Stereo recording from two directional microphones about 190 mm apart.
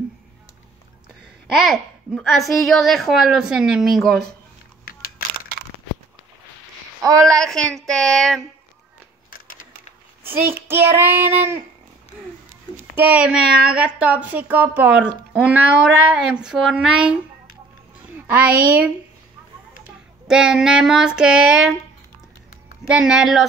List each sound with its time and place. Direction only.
1.5 s a child's voice: centre (ahead or behind)
7.0 s a sound: 20° right (ahead or behind)
7.2 s a child's voice: 5° left (ahead or behind)
10.2 s speech: 10° right (ahead or behind)
12.9 s a child's voice: 5° right (ahead or behind)
20.2 s a child's voice: 5° right (ahead or behind)
22.8 s a child's voice: 5° right (ahead or behind)